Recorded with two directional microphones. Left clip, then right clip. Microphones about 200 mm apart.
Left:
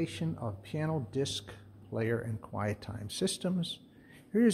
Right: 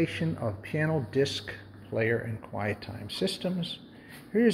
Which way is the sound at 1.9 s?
25° left (ahead or behind).